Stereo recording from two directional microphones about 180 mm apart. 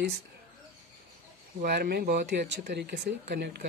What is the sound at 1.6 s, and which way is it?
Speech, 60° right (ahead or behind).